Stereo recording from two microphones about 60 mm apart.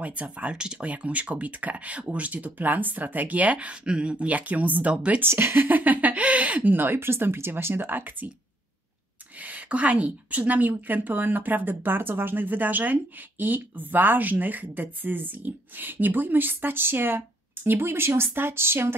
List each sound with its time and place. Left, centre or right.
0.0 s speech: right
5.2 s a woman's voice: right
9.4 s a woman's voice: right